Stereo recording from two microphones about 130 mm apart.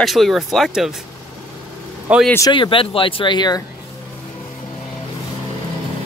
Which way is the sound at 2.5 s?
40° left (ahead or behind).